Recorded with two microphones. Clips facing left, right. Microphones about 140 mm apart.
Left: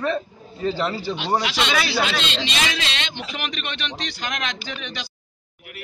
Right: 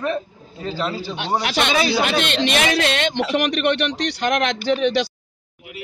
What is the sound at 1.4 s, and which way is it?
A man's voice, 55° right (ahead or behind).